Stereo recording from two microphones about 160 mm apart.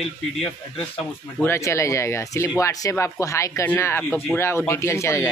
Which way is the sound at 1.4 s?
15° left (ahead or behind).